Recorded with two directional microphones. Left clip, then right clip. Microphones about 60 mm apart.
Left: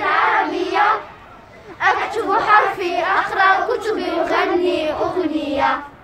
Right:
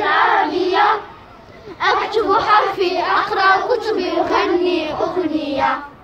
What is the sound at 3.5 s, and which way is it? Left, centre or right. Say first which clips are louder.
Child singing: right 2 dB; left.